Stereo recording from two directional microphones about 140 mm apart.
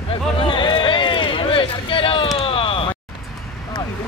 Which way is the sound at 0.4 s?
35° left (ahead or behind).